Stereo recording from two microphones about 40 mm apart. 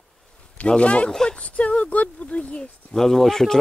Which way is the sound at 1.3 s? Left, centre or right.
Left.